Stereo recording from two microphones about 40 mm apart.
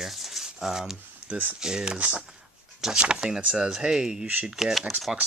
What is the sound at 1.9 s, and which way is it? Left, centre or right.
Speech, right.